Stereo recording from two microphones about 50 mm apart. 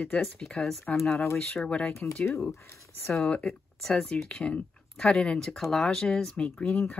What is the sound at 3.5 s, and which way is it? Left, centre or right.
Speech, centre.